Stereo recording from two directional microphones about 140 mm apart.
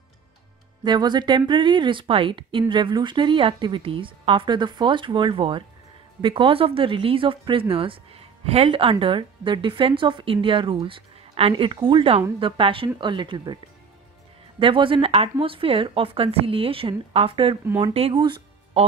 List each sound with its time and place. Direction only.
0.8 s speech: 30° right (ahead or behind)
14.6 s speech: 40° right (ahead or behind)